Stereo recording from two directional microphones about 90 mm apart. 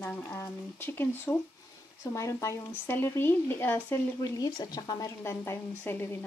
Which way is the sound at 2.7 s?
25° left (ahead or behind).